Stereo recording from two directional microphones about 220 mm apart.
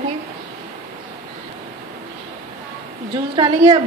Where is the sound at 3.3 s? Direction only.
25° right (ahead or behind).